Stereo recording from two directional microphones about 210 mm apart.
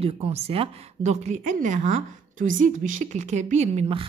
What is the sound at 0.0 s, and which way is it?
A woman's voice, 30° right (ahead or behind).